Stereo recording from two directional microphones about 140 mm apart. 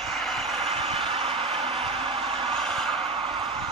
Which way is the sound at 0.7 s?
45° right (ahead or behind).